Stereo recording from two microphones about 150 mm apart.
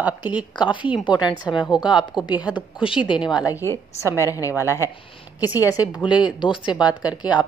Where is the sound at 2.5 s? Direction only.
35° left (ahead or behind).